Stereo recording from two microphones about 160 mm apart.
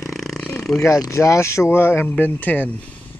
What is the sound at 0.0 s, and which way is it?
Roar, centre (ahead or behind).